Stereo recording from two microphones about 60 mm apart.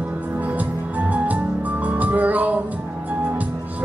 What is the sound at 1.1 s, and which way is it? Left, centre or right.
Music, right.